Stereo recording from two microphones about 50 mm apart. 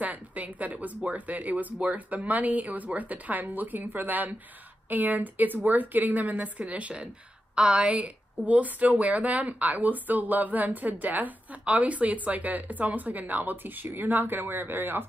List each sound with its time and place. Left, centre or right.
0.0 s a woman's voice: right